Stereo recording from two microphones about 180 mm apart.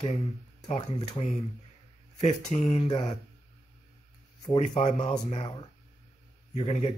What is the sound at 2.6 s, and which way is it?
Speech, 30° left (ahead or behind).